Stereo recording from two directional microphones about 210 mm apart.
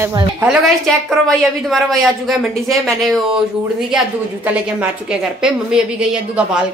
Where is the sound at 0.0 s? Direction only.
20° right (ahead or behind).